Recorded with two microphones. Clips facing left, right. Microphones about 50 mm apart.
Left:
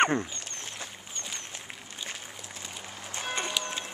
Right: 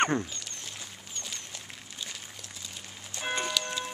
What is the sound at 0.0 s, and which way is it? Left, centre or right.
Speech, centre.